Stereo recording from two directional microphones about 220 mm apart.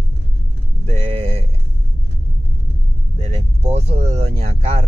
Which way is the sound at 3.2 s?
30° right (ahead or behind).